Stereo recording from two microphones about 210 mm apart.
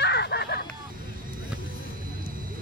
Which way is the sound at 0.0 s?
55° left (ahead or behind).